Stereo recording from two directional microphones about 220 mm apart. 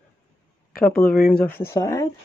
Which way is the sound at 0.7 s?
40° left (ahead or behind).